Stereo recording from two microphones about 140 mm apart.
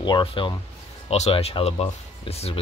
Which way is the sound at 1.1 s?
45° left (ahead or behind).